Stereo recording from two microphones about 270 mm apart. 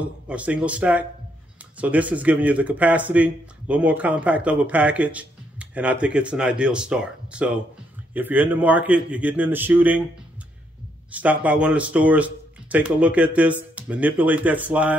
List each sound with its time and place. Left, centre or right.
0.0 s a man's voice: centre
11.1 s speech: centre